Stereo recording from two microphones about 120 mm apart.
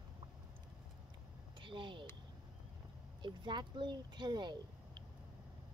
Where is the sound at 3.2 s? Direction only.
40° right (ahead or behind).